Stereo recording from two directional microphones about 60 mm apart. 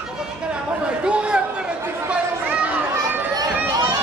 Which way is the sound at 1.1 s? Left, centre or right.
Centre.